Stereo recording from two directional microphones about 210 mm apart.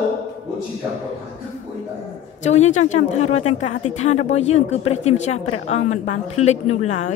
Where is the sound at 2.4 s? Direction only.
35° left (ahead or behind).